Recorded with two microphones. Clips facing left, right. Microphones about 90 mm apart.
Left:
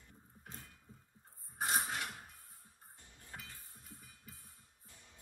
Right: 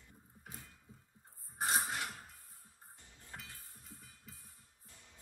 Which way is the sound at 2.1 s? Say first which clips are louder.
Even; 15° left (ahead or behind).